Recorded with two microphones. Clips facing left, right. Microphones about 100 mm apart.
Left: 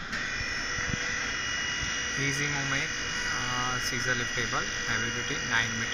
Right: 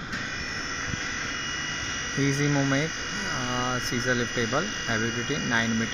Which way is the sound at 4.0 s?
20° right (ahead or behind).